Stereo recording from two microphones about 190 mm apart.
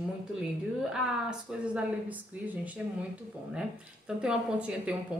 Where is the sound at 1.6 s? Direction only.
5° right (ahead or behind).